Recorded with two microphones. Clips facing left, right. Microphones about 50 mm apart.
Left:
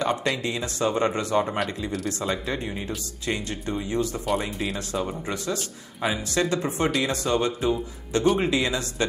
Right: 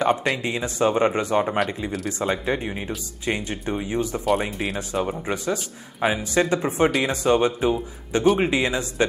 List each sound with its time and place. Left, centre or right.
0.0 s speech: right